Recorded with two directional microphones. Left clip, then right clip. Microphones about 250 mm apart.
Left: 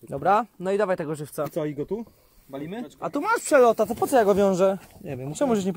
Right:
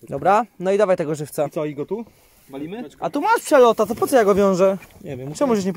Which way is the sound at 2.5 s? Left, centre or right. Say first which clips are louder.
Right 3 dB; left.